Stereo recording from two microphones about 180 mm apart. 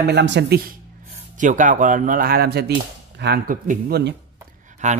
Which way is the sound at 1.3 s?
45° right (ahead or behind).